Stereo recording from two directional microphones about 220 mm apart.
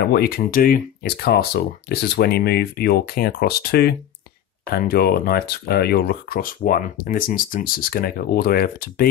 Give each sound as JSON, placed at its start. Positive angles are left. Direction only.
{"t": 0.1, "sound": "speech", "side_deg": 45}